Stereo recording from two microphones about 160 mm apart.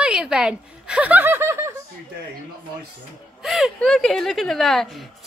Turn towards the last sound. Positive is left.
turn(degrees=0)  # may be behind; listen again after turning